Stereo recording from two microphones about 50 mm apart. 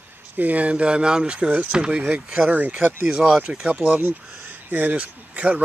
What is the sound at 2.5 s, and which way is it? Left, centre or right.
Speech, right.